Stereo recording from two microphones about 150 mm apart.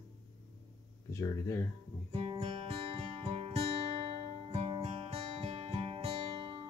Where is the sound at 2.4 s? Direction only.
40° right (ahead or behind).